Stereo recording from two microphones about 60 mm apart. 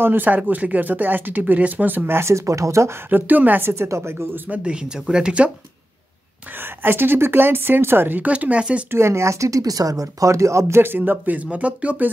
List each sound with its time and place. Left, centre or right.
0.0 s speech: right
2.1 s speech: right
3.1 s speech: right
3.7 s a woman's voice: right
4.5 s speech: centre
6.6 s speech: right
8.3 s speech: right
8.9 s speech: right
10.8 s speech: right